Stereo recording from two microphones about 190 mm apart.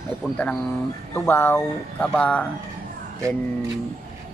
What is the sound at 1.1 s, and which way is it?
Speech, 10° left (ahead or behind).